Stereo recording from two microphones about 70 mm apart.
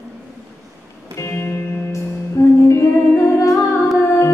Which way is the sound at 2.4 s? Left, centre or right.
Left.